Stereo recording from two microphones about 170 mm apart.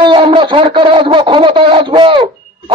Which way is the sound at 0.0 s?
30° right (ahead or behind).